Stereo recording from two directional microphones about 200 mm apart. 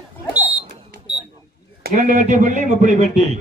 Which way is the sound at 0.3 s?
10° right (ahead or behind).